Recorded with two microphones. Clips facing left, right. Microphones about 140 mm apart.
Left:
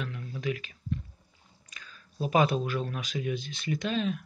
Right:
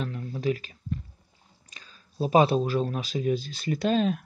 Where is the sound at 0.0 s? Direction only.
35° right (ahead or behind).